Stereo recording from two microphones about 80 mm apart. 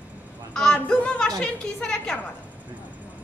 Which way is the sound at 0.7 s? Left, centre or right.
Centre.